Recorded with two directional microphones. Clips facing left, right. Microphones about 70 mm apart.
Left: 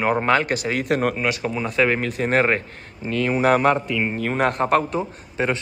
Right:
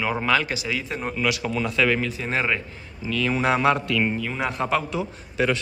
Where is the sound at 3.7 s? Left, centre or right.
Centre.